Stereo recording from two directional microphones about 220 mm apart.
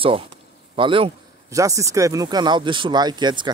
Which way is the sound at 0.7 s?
25° right (ahead or behind).